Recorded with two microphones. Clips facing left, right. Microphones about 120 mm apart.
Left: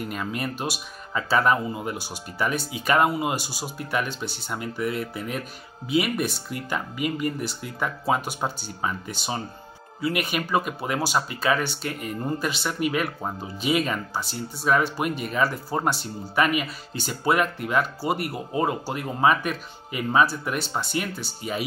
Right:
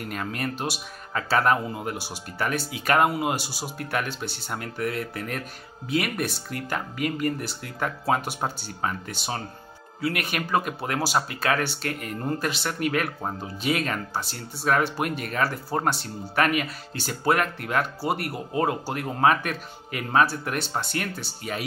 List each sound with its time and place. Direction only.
0.0 s speech: centre (ahead or behind)
4.6 s speech: 50° right (ahead or behind)
5.9 s speech: 5° left (ahead or behind)